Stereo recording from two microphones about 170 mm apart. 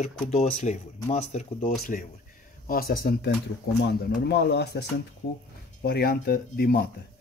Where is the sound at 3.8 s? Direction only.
75° left (ahead or behind).